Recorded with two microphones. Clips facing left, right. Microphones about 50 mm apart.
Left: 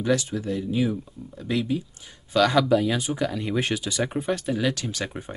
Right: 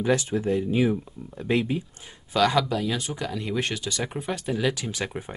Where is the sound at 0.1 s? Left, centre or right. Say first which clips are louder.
Right 1 dB; right.